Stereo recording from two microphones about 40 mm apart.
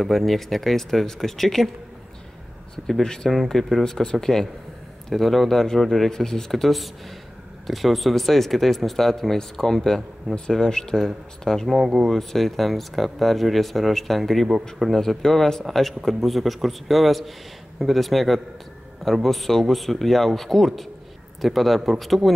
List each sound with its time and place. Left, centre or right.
0.0 s speech: centre
3.0 s speech: centre
11.6 s speech: centre